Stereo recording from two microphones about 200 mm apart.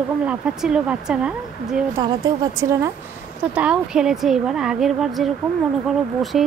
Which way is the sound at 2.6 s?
15° right (ahead or behind).